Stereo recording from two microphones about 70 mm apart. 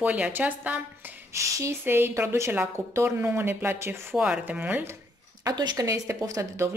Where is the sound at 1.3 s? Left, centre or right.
Right.